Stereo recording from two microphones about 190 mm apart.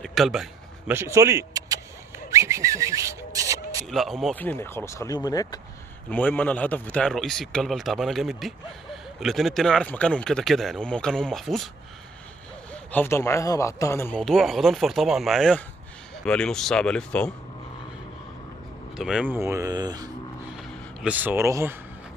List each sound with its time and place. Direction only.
0.0 s vehicle: centre (ahead or behind); by 3.8 s 20° right (ahead or behind)
3.8 s speech: centre (ahead or behind); by 5.6 s 20° left (ahead or behind)
6.0 s a man's voice: 10° left (ahead or behind)
12.7 s speech: 10° left (ahead or behind)
14.2 s a man's voice: centre (ahead or behind)
18.9 s a man's voice: centre (ahead or behind)
19.3 s speech: 15° right (ahead or behind)
21.0 s speech: 10° right (ahead or behind)